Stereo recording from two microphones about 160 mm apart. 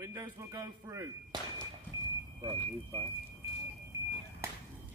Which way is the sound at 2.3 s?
25° right (ahead or behind).